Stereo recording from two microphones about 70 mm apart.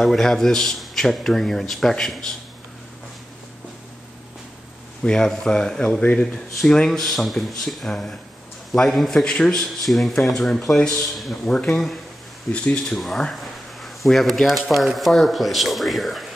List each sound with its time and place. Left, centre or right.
0.0 s speech: centre
5.0 s speech: centre
6.6 s speech: centre
12.5 s speech: centre
12.8 s speech: centre